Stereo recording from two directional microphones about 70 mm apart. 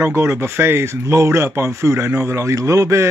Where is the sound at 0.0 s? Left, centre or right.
Right.